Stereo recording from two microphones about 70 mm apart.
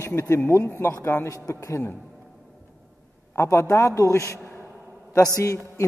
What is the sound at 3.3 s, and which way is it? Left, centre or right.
A man's voice, left.